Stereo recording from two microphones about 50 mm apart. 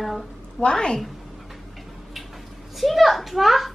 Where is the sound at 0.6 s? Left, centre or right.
Centre.